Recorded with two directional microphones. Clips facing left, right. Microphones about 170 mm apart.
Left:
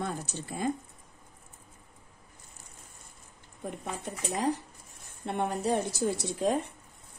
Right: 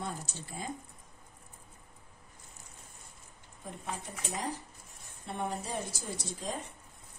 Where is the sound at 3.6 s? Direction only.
65° left (ahead or behind).